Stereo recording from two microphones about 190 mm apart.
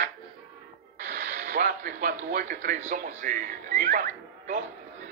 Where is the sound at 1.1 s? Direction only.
45° right (ahead or behind).